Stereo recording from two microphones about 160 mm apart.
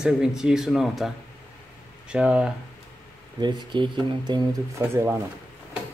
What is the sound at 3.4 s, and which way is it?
Speech, 30° right (ahead or behind).